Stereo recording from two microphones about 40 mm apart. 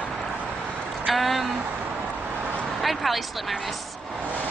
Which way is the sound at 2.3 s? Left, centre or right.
Right.